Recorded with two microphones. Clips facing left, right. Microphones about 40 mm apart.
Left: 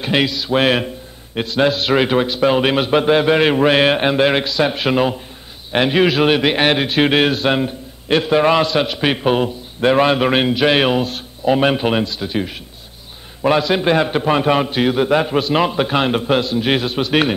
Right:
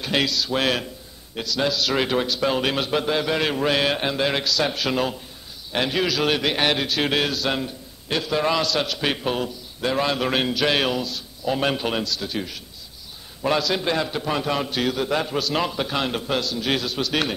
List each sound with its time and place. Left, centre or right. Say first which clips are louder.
0.0 s a man's voice: left 5 dB; left
11.5 s a man's voice: left 7 dB; left